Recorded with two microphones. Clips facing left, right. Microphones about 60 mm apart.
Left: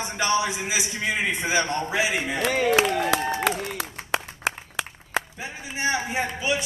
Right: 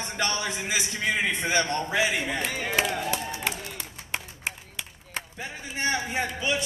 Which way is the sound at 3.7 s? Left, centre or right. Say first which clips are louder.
Left 7 dB; left.